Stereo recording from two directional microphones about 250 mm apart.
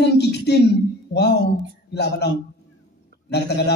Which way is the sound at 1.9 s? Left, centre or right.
Left.